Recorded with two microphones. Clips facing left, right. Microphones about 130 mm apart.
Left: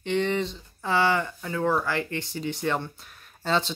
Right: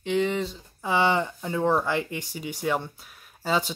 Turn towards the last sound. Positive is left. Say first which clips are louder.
# even
turn(degrees=-10)  # may be behind; listen again after turning